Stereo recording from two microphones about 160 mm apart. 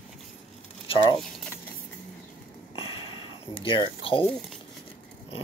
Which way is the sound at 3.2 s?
35° left (ahead or behind).